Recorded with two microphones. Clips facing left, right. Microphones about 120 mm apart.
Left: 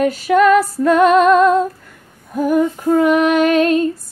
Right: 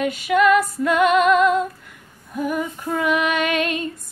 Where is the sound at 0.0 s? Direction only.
40° left (ahead or behind).